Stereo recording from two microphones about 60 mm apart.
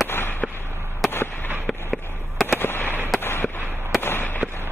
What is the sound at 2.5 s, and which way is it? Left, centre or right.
Fireworks, left.